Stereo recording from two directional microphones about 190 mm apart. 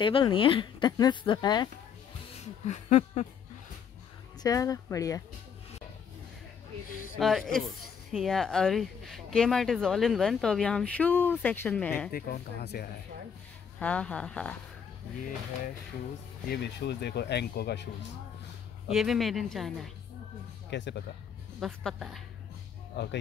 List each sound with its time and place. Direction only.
0.0 s a woman's voice: 25° left (ahead or behind)
2.3 s a sound: 35° left (ahead or behind)
4.4 s speech: 20° left (ahead or behind)
7.2 s speech: centre (ahead or behind)
12.1 s speech: 50° left (ahead or behind)
13.7 s speech: 5° left (ahead or behind)
16.4 s speech: 60° left (ahead or behind)
18.9 s speech: centre (ahead or behind)
20.7 s speech: 65° left (ahead or behind)
21.5 s speech: centre (ahead or behind)